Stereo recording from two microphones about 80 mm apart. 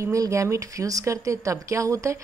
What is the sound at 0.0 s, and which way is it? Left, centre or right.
A woman's voice, right.